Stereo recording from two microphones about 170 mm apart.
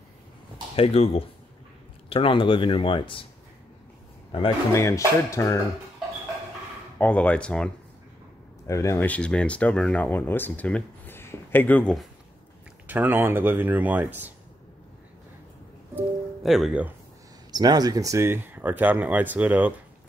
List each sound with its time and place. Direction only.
0.7 s speech: 35° left (ahead or behind)
4.7 s speech: 15° left (ahead or behind)
7.0 s speech: 10° left (ahead or behind)
8.6 s speech: 15° left (ahead or behind)
12.8 s speech: 10° right (ahead or behind)
15.9 s music: 5° right (ahead or behind)
17.5 s speech: 25° right (ahead or behind)